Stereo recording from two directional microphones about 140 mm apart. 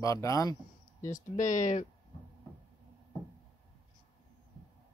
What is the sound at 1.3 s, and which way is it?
Speech, 65° left (ahead or behind).